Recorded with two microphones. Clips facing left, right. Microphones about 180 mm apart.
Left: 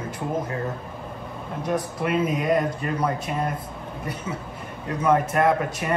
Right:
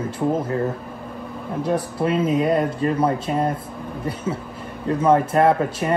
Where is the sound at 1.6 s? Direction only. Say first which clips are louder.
Right 3 dB; 30° right (ahead or behind).